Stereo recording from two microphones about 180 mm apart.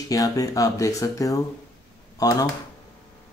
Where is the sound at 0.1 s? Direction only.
20° left (ahead or behind).